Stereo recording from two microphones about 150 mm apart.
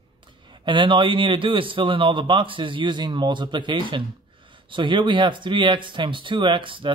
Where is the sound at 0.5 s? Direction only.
35° right (ahead or behind).